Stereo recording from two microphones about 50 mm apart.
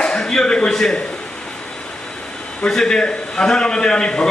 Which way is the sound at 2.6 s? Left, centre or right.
Centre.